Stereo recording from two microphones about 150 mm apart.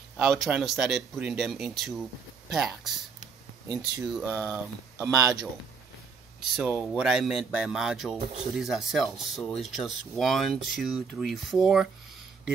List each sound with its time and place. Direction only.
0.2 s speech: 5° right (ahead or behind)
4.5 s speech: 20° right (ahead or behind)
6.5 s speech: 5° right (ahead or behind)